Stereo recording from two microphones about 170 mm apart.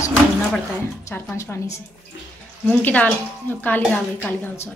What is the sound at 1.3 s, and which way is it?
A woman's voice, 15° left (ahead or behind).